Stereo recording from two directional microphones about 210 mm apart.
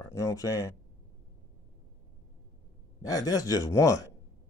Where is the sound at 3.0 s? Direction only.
15° left (ahead or behind).